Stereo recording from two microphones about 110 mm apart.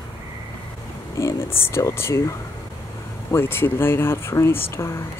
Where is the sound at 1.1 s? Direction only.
25° left (ahead or behind).